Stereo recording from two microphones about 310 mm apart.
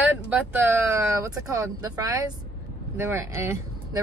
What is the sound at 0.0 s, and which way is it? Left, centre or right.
Speech, centre.